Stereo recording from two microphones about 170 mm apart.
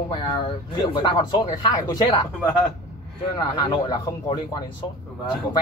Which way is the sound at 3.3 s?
25° left (ahead or behind).